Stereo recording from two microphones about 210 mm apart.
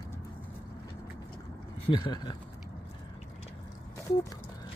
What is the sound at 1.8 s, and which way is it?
Speech, 20° left (ahead or behind).